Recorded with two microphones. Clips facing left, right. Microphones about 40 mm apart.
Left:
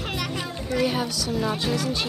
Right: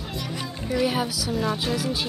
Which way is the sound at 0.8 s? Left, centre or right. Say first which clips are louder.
Even; centre.